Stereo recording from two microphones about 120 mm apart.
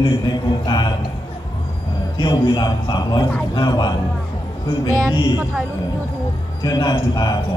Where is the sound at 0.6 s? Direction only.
35° left (ahead or behind).